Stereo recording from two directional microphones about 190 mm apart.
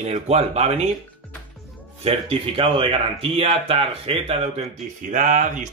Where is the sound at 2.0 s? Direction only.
30° right (ahead or behind).